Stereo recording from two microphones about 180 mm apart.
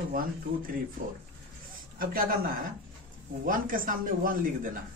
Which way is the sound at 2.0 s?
55° right (ahead or behind).